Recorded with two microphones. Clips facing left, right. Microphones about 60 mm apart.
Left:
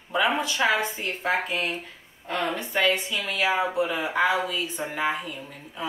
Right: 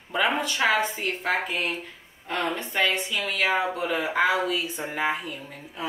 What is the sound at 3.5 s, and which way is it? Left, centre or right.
Speech, centre.